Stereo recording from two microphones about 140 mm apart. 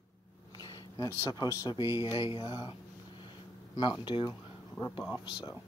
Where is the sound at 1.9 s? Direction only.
15° right (ahead or behind).